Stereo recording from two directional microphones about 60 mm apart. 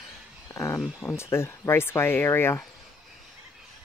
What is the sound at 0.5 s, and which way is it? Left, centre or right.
Speech, left.